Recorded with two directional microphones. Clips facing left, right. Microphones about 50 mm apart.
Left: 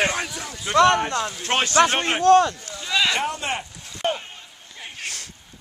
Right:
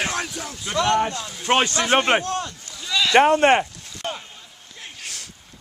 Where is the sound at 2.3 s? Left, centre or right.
Left.